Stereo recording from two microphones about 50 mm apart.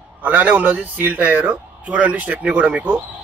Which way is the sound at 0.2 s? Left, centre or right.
Right.